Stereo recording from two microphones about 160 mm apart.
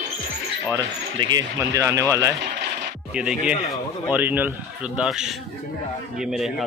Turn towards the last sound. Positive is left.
turn(degrees=0)  # may be behind; listen again after turning